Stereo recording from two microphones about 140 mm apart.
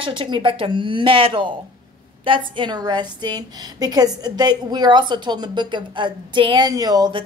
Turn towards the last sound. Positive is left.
turn(degrees=-30)  # may be behind; listen again after turning